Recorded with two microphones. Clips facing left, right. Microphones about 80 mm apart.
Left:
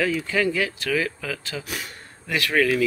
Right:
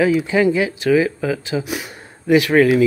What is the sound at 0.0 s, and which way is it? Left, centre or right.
Speech, centre.